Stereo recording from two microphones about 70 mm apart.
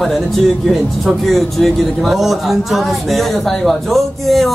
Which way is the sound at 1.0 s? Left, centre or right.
Centre.